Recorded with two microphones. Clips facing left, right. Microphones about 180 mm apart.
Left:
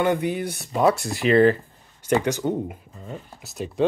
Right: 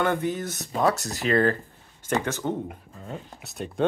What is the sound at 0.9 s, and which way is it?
Speech, 40° right (ahead or behind).